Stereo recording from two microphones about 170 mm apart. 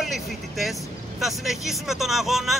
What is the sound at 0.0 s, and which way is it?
Speech, centre (ahead or behind).